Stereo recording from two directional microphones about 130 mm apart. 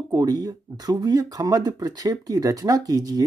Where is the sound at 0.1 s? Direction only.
30° right (ahead or behind).